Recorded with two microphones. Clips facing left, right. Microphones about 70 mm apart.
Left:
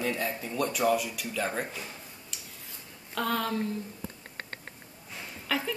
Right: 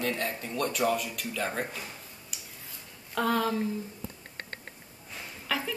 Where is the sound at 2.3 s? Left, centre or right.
Centre.